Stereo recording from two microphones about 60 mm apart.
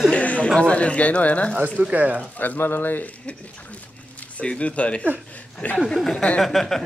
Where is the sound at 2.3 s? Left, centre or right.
Left.